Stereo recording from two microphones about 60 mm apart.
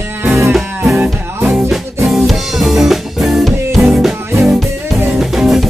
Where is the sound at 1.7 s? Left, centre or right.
Centre.